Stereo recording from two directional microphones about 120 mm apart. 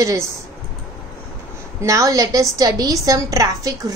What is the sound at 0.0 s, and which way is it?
Speech, 25° right (ahead or behind).